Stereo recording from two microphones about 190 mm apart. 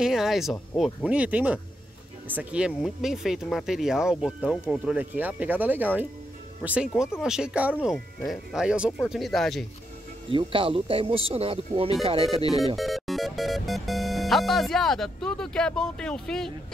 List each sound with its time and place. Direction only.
0.0 s speech: centre (ahead or behind)
10.3 s speech: 30° right (ahead or behind)
12.7 s speech: centre (ahead or behind)